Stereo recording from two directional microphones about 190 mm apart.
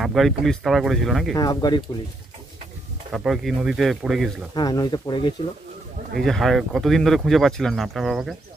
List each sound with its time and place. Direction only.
0.0 s speech: centre (ahead or behind)
1.3 s speech: 20° left (ahead or behind)
3.1 s speech: centre (ahead or behind)
4.6 s speech: 20° left (ahead or behind)
6.1 s speech: centre (ahead or behind)